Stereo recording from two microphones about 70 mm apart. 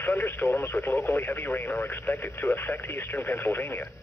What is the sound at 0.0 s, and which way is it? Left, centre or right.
Speech, left.